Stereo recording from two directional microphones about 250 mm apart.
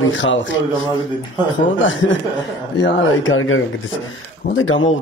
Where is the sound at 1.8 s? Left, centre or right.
Left.